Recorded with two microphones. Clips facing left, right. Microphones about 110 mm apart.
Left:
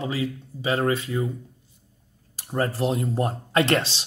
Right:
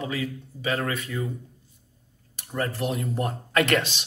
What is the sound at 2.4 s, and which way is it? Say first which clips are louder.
Speech: left 4 dB; 35° left (ahead or behind).